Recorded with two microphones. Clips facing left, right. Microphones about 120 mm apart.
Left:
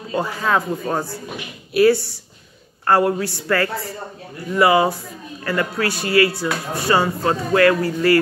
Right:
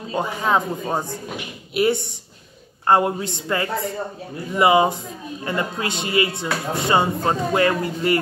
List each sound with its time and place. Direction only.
0.1 s speech: 20° right (ahead or behind)